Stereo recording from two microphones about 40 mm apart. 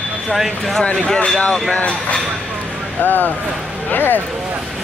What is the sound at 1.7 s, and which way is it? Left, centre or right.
Speech, left.